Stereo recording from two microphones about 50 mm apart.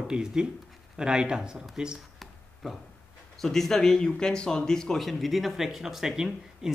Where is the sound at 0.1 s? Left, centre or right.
Centre.